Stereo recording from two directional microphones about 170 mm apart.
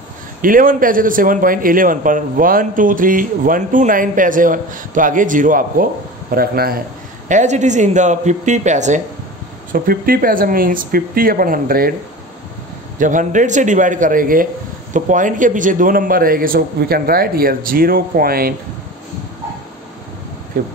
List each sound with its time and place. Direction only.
0.4 s a man's voice: 55° right (ahead or behind)
7.2 s a man's voice: 45° right (ahead or behind)
9.7 s a man's voice: 55° right (ahead or behind)
13.0 s a man's voice: 50° right (ahead or behind)